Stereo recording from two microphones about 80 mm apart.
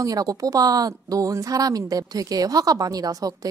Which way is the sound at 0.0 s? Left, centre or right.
Right.